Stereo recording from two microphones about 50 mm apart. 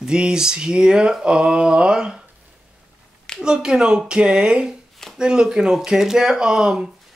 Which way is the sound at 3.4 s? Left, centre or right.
Centre.